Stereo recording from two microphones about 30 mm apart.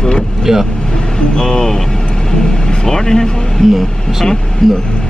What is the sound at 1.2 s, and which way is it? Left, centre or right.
Speech, left.